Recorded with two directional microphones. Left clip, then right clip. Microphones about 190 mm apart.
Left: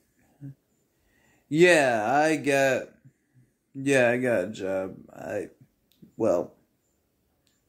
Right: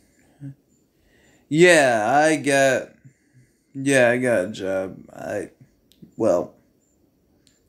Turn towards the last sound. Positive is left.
turn(degrees=-5)  # may be behind; listen again after turning